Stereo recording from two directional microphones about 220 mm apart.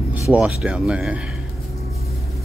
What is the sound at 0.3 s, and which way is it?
Speech, 5° right (ahead or behind).